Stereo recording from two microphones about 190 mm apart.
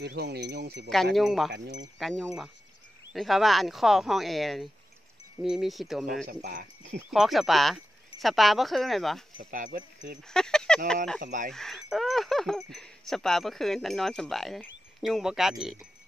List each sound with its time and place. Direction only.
0.0 s speech: 60° right (ahead or behind)
1.1 s speech: centre (ahead or behind)
1.5 s speech: 65° right (ahead or behind)
2.0 s speech: centre (ahead or behind)
6.2 s speech: 45° right (ahead or behind)
7.1 s speech: centre (ahead or behind)
9.4 s speech: 45° right (ahead or behind)
10.2 s honk: 5° left (ahead or behind)
11.1 s speech: 45° right (ahead or behind)
11.5 s speech: centre (ahead or behind)